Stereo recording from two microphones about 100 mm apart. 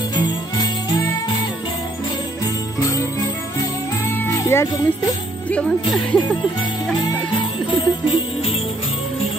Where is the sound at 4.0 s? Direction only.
25° left (ahead or behind).